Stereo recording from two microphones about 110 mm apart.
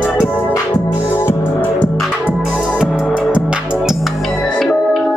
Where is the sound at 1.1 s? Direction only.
20° left (ahead or behind).